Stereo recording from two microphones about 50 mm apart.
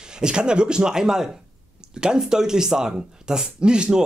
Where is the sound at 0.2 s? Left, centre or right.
Centre.